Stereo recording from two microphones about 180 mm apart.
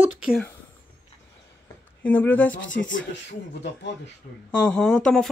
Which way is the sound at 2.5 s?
90° left.